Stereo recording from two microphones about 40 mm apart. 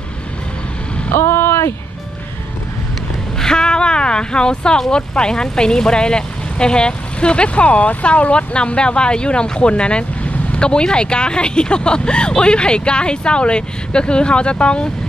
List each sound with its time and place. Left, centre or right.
1.1 s vehicle: left
3.3 s a sound: centre
4.9 s speech: left